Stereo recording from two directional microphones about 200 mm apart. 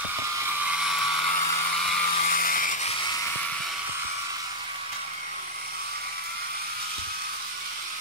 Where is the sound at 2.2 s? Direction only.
45° left (ahead or behind).